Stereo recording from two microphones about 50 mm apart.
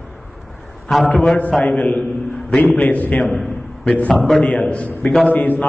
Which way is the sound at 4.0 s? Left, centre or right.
Left.